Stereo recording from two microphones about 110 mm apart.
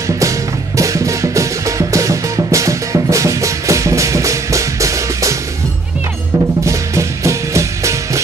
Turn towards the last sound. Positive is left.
turn(degrees=-25)  # may be behind; listen again after turning